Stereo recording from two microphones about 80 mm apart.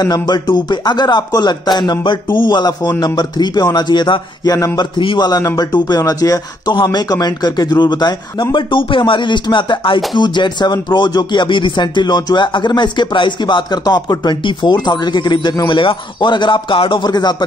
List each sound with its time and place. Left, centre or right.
0.0 s speech: left
2.8 s speech: left
4.5 s speech: left
4.7 s music: left
5.3 s speech: left
6.7 s speech: left
8.5 s music: left
14.2 s music: left
15.7 s speech: left